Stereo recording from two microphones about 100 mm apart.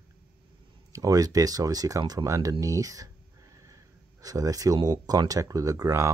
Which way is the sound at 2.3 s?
30° right (ahead or behind).